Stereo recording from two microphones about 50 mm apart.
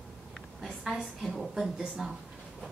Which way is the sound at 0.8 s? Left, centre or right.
Centre.